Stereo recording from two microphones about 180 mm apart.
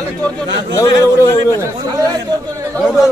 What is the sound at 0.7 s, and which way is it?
Speech, 15° left (ahead or behind).